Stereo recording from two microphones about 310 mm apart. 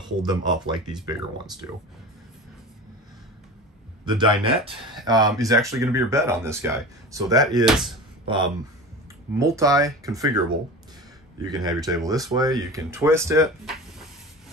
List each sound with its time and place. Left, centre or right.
0.2 s speech: centre
4.0 s speech: centre
9.4 s speech: centre
11.4 s speech: centre